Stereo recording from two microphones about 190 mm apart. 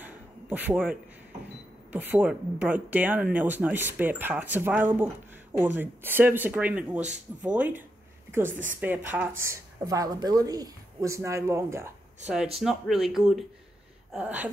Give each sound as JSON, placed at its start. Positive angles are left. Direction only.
{"t": 0.0, "sound": "a sound", "side_deg": -10}
{"t": 1.9, "sound": "a woman's voice", "side_deg": -10}
{"t": 12.5, "sound": "speech", "side_deg": 0}